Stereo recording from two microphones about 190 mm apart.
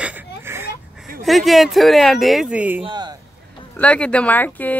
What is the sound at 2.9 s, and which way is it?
Speech, 25° right (ahead or behind).